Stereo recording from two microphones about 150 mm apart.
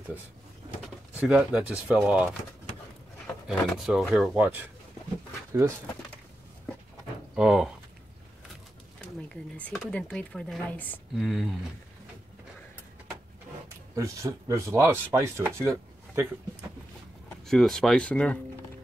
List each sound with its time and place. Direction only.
1.1 s speech: 10° right (ahead or behind)
3.3 s speech: centre (ahead or behind)
7.3 s speech: 5° right (ahead or behind)
9.3 s speech: 5° left (ahead or behind)
11.1 s speech: centre (ahead or behind)
13.9 s chopping: 20° right (ahead or behind)
17.5 s speech: centre (ahead or behind)